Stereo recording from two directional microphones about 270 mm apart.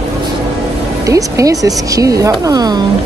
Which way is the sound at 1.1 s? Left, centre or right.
Centre.